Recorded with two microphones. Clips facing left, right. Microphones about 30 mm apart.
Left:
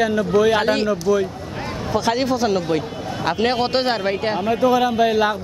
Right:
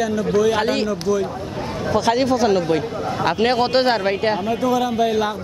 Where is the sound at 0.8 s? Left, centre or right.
Left.